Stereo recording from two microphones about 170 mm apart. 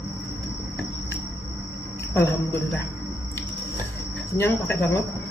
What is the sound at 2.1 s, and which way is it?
Cricket, 15° left (ahead or behind).